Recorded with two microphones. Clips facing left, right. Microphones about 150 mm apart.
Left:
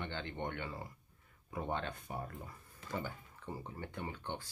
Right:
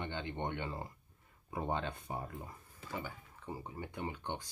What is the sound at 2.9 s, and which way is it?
Speech, 5° right (ahead or behind).